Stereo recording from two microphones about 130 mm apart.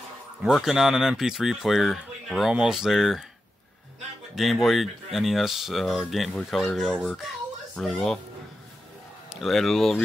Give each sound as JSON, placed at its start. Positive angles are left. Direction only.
{"t": 0.4, "sound": "speech", "side_deg": 0}
{"t": 4.4, "sound": "speech", "side_deg": 0}
{"t": 9.3, "sound": "speech", "side_deg": 0}